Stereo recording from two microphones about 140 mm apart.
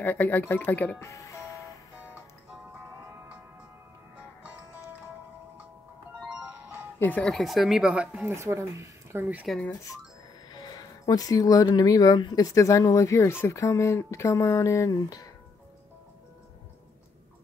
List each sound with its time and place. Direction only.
0.0 s speech: 15° left (ahead or behind)
6.1 s music: 5° right (ahead or behind)
7.0 s speech: 10° left (ahead or behind); by 8.3 s 5° right (ahead or behind)
8.4 s speech: 20° right (ahead or behind)
9.5 s speech: centre (ahead or behind)
10.5 s speech: 30° left (ahead or behind)